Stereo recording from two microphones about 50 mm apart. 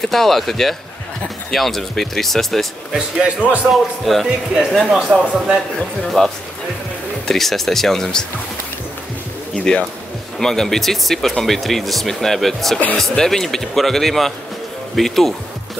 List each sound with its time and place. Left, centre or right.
0.0 s speech: centre
2.9 s speech: right
4.0 s speech: centre
4.8 s a man's voice: centre
6.0 s speech: centre
9.6 s speech: left
10.4 s speech: centre